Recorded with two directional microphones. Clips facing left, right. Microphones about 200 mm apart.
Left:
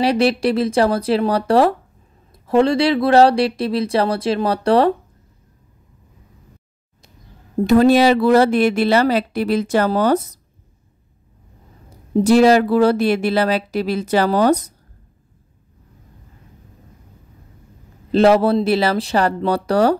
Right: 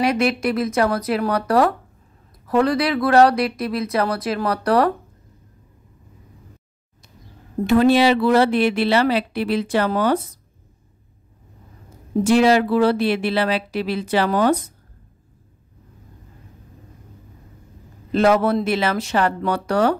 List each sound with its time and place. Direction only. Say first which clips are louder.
0.0 s speech: left 3 dB; 30° left (ahead or behind)
7.6 s a woman's voice: left 3 dB; 40° left (ahead or behind)
12.2 s a woman's voice: left 3 dB; 40° left (ahead or behind)
18.1 s speech: left 3 dB; 30° left (ahead or behind)